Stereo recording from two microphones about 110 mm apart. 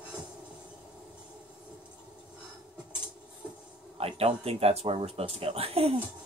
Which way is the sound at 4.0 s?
65° right (ahead or behind).